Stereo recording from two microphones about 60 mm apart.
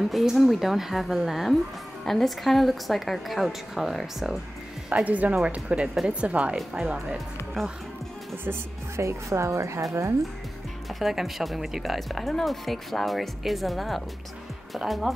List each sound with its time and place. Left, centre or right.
0.0 s speech: centre
4.8 s speech: right
8.5 s a woman's voice: right
10.9 s speech: centre